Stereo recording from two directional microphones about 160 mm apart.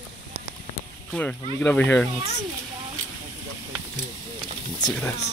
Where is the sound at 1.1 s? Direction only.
5° left (ahead or behind).